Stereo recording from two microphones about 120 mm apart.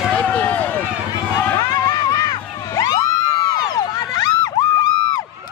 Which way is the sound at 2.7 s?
30° left (ahead or behind).